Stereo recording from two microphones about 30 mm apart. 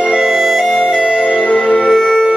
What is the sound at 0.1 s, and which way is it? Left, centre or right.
Music, centre.